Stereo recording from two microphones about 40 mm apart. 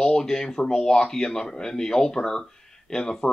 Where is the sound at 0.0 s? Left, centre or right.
Centre.